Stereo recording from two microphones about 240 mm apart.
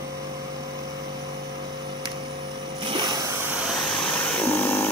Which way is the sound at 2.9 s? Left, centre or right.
Centre.